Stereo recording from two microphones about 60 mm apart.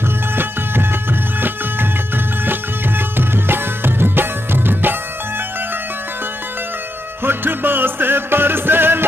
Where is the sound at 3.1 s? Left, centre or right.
Right.